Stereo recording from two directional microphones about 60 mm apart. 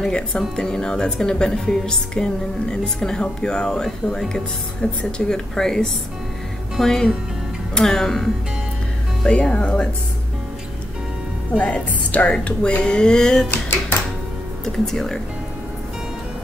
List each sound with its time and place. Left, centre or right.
0.0 s speech: centre
4.8 s speech: centre
9.2 s speech: centre
11.5 s speech: left
14.6 s speech: centre